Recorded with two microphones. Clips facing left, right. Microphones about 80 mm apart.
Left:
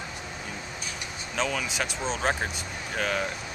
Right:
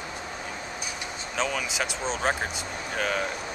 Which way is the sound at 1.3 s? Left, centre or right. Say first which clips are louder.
Even; centre.